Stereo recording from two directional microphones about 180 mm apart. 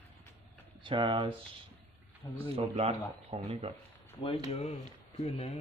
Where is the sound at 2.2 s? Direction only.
20° left (ahead or behind).